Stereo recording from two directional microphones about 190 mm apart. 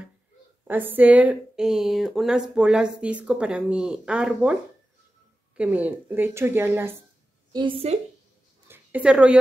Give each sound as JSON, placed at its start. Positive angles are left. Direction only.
{"t": 0.7, "sound": "a woman's voice", "side_deg": -10}
{"t": 5.6, "sound": "a woman's voice", "side_deg": -10}
{"t": 7.5, "sound": "a woman's voice", "side_deg": -30}
{"t": 8.6, "sound": "a sound", "side_deg": -10}